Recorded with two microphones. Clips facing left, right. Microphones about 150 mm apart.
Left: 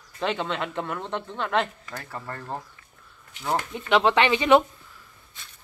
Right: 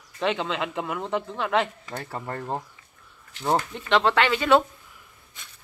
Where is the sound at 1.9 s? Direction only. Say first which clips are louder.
Right 3 dB; 25° right (ahead or behind).